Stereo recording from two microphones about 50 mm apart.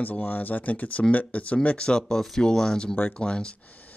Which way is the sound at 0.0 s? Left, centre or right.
Left.